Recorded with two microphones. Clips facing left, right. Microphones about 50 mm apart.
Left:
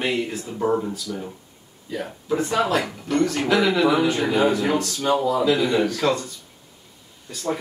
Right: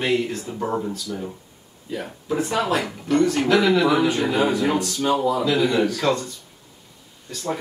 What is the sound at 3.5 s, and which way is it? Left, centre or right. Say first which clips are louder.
Speech: even; centre.